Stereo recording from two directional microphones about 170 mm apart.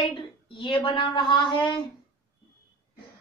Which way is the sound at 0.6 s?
30° left (ahead or behind).